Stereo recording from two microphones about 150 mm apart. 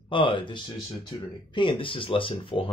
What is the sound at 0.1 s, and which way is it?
Speech, 35° left (ahead or behind).